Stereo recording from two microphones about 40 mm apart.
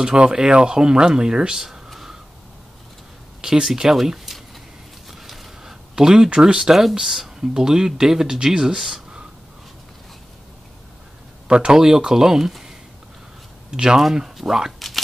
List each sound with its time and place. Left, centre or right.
0.2 s speech: right
1.9 s a sound: centre
3.3 s speech: centre
3.9 s speech: centre
5.0 s a sound: centre
5.6 s speech: centre
6.7 s speech: centre
11.5 s speech: right
11.8 s speech: centre
14.3 s speech: centre